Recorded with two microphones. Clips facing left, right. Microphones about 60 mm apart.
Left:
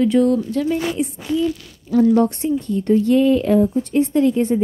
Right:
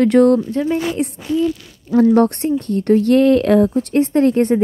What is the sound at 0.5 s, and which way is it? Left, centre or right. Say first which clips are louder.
Speech: right 2 dB; right.